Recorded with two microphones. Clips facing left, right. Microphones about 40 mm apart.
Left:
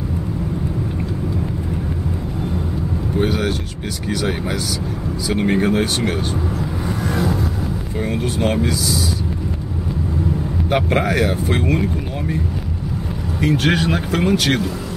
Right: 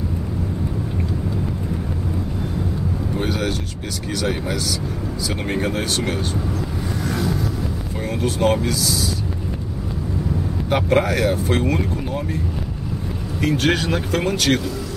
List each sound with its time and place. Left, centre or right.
3.2 s speech: centre
7.1 s a sound: centre
8.0 s speech: centre
10.7 s speech: centre
13.4 s speech: centre